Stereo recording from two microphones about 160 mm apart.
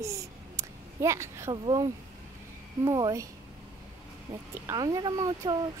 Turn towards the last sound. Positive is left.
turn(degrees=-25)  # may be behind; listen again after turning